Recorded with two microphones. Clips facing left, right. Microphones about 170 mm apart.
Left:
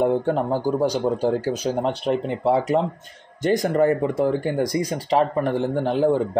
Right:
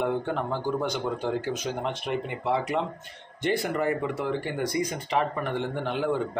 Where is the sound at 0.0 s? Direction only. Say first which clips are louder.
Left 7 dB; 35° left (ahead or behind).